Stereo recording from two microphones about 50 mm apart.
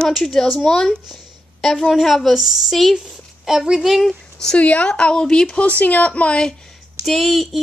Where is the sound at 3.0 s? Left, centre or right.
Centre.